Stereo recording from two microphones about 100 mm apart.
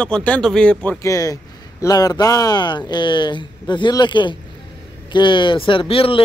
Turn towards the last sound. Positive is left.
turn(degrees=65)  # may be behind; listen again after turning